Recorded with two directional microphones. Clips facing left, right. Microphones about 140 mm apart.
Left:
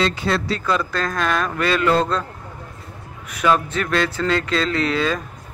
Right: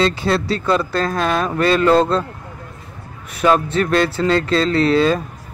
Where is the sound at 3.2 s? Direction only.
35° right (ahead or behind).